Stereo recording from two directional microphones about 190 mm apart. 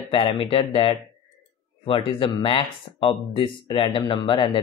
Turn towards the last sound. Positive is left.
turn(degrees=25)  # may be behind; listen again after turning